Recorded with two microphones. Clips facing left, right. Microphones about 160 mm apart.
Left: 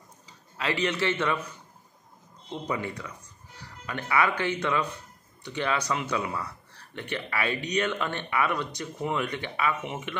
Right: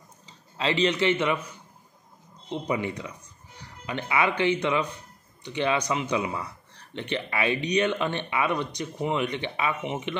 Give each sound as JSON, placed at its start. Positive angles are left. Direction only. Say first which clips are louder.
{"t": 0.6, "sound": "speech", "louder": "right 4 dB", "side_deg": -25}
{"t": 2.5, "sound": "speech", "louder": "right 3 dB", "side_deg": -20}